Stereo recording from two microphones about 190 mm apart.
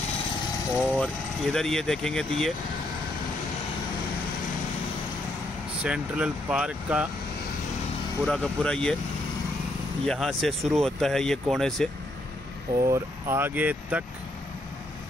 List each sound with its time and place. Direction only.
0.9 s speech: 5° left (ahead or behind)
5.9 s speech: 5° right (ahead or behind)
8.3 s speech: 5° left (ahead or behind)
10.0 s speech: centre (ahead or behind)
12.8 s speech: 15° right (ahead or behind)